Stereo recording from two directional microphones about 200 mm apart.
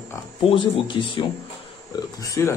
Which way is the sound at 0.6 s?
25° left (ahead or behind).